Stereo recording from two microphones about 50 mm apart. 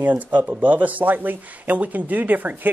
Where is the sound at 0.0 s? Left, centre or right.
Right.